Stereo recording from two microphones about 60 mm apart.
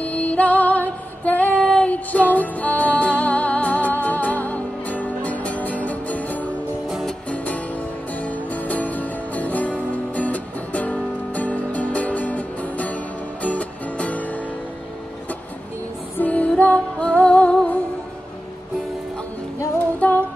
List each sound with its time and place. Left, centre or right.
0.0 s music: left
1.6 s child singing: centre
1.9 s music: left
16.2 s music: left
20.0 s humming: left